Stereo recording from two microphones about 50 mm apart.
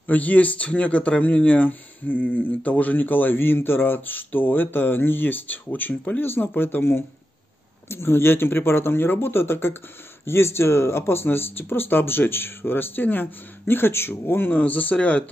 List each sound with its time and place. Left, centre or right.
0.0 s speech: left
14.5 s speech: left